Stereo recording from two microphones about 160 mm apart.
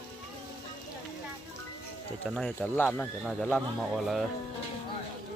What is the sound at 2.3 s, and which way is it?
Speech, 5° left (ahead or behind).